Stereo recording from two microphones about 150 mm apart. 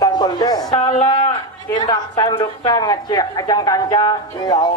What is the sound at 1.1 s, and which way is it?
Speech, 30° left (ahead or behind).